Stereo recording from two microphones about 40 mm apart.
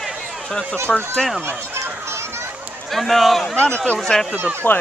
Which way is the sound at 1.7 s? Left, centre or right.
Right.